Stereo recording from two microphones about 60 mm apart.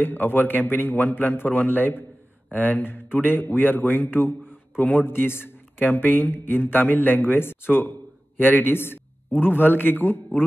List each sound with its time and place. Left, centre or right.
0.0 s a man's voice: left